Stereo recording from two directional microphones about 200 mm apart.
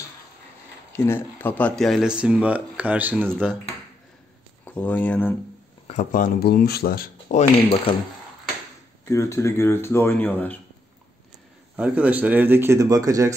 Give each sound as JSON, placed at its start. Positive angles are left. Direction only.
{"t": 0.9, "sound": "speech", "side_deg": 10}
{"t": 3.3, "sound": "speech", "side_deg": 0}
{"t": 4.7, "sound": "speech", "side_deg": 10}
{"t": 5.9, "sound": "speech", "side_deg": 40}
{"t": 9.0, "sound": "speech", "side_deg": 15}
{"t": 11.7, "sound": "speech", "side_deg": -5}